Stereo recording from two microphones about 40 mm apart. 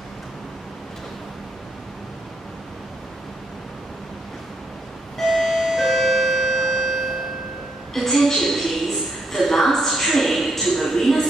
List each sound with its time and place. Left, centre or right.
5.2 s music: centre
6.6 s clock: centre
7.9 s a sound: centre